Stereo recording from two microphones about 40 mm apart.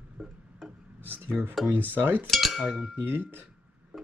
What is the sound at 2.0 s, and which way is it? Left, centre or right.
Speech, right.